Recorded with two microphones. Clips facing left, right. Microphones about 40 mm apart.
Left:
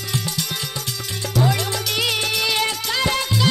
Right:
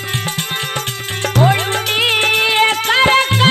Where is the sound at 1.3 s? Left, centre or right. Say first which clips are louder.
Right 6 dB; right.